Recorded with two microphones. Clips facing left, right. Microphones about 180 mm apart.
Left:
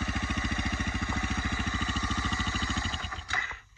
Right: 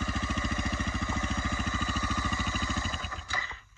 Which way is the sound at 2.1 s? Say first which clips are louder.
Even; 25° left (ahead or behind).